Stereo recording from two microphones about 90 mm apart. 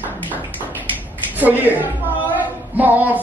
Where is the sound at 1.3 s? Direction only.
20° right (ahead or behind).